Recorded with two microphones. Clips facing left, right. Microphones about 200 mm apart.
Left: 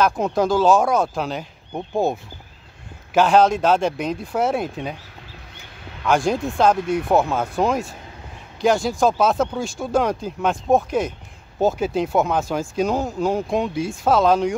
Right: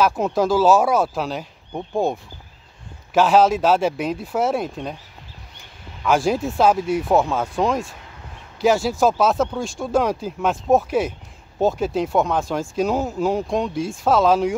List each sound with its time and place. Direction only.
0.0 s speech: 5° right (ahead or behind)
6.0 s speech: 5° right (ahead or behind)